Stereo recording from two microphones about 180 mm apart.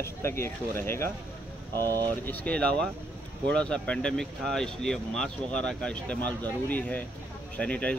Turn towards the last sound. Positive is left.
turn(degrees=5)  # may be behind; listen again after turning